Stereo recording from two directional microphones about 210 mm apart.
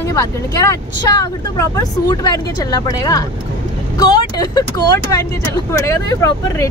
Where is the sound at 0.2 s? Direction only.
15° left (ahead or behind).